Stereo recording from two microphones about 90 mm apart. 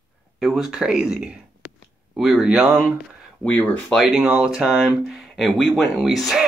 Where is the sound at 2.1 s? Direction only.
Centre (ahead or behind).